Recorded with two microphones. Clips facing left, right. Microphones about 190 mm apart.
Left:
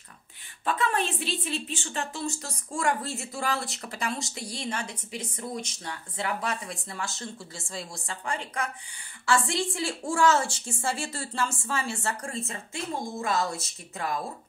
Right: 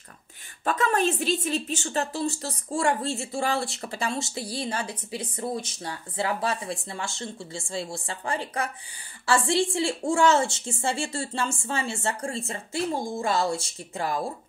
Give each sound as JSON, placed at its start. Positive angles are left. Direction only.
{"t": 0.7, "sound": "a woman's voice", "side_deg": -45}